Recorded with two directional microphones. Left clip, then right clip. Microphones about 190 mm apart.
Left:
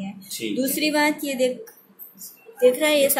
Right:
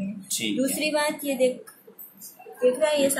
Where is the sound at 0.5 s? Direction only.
35° left (ahead or behind).